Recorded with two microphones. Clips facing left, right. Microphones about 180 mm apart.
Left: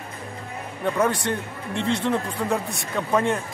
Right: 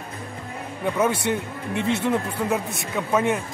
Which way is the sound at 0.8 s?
5° right (ahead or behind).